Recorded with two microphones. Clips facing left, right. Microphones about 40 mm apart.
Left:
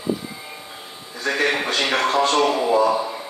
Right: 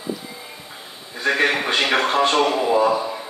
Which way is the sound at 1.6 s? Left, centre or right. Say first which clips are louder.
Right 1 dB; centre.